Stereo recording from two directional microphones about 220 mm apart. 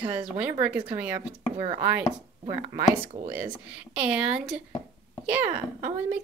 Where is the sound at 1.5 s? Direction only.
30° right (ahead or behind).